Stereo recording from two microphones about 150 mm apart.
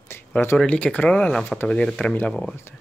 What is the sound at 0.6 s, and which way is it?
Speech, 5° left (ahead or behind).